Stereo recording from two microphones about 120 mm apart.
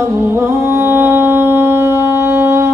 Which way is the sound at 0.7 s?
20° right (ahead or behind).